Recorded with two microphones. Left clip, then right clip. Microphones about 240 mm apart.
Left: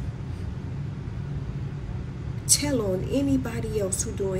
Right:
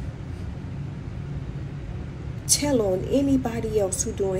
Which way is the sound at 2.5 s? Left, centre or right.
Right.